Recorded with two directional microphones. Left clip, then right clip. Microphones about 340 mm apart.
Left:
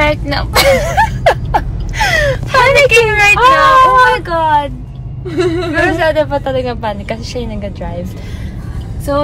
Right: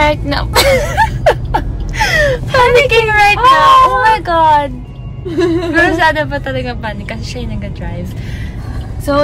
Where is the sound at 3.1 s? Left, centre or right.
Centre.